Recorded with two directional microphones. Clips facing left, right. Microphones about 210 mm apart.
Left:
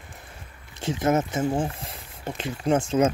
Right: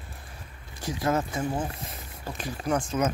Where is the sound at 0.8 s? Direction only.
25° left (ahead or behind).